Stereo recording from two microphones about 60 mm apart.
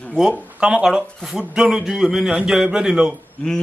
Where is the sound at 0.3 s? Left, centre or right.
Centre.